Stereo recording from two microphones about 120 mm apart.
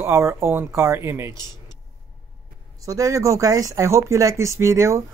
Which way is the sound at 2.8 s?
30° right (ahead or behind).